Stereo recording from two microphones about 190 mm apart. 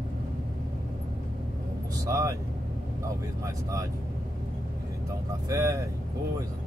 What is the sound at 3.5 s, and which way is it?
Speech, 15° right (ahead or behind).